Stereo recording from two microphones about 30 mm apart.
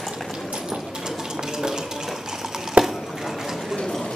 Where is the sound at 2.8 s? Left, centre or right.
Right.